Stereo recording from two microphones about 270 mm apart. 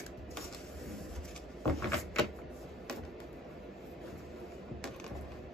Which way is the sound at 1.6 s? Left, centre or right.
Centre.